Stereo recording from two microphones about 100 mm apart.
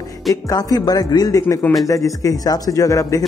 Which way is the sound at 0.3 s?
35° left (ahead or behind).